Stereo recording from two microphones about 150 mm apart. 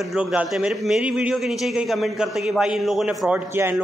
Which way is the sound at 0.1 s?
5° right (ahead or behind).